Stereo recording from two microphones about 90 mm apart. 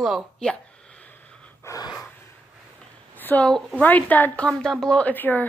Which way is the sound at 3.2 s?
20° left (ahead or behind).